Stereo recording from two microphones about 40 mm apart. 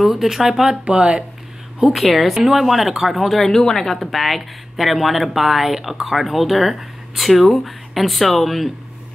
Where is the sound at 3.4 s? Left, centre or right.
Centre.